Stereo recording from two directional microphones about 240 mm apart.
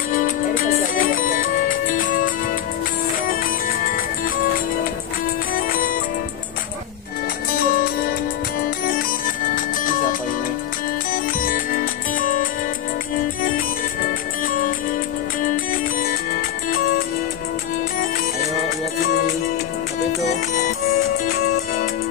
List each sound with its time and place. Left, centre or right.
0.1 s music: left
5.5 s music: left
7.5 s music: left
15.4 s music: left
20.1 s music: left